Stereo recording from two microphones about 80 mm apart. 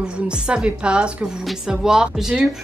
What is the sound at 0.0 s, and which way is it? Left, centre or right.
A woman's voice, centre.